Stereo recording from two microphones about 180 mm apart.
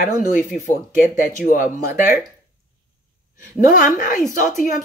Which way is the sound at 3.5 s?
50° left (ahead or behind).